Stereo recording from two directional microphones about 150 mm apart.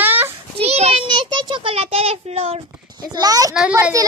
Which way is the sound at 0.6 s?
45° right (ahead or behind).